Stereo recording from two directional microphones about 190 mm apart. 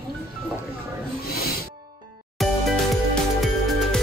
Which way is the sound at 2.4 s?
Centre (ahead or behind).